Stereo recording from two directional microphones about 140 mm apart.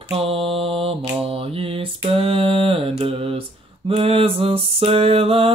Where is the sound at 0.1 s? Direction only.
40° right (ahead or behind).